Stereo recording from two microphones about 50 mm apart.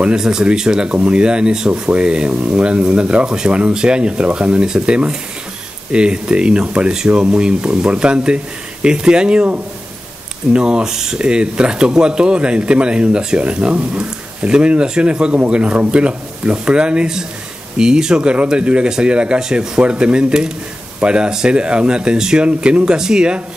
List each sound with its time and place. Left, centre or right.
0.0 s speech: centre